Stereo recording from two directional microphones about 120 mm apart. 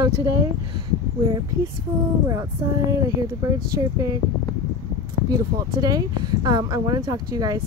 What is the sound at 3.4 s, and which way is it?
Speech, 30° right (ahead or behind).